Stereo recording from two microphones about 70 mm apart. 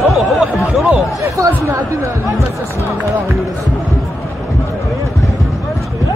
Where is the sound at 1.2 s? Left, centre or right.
Right.